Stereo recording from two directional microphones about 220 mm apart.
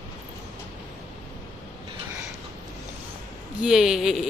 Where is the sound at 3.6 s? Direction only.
Centre (ahead or behind).